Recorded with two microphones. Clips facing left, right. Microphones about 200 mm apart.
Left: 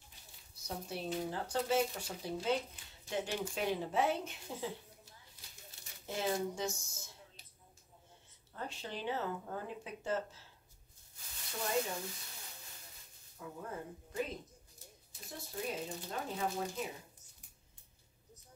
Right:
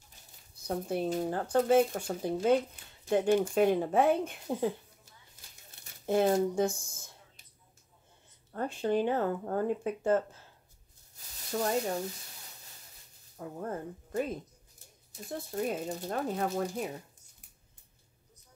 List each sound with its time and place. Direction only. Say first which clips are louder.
0.7 s speech: right 9 dB; 50° right (ahead or behind)
5.4 s a sound: right 1 dB; 45° right (ahead or behind)
6.0 s speech: right 10 dB; 55° right (ahead or behind)
8.5 s speech: right 14 dB; 55° right (ahead or behind)
13.4 s speech: right 7 dB; 50° right (ahead or behind)